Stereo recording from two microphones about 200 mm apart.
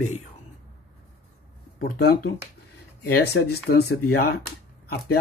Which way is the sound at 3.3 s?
70° left (ahead or behind).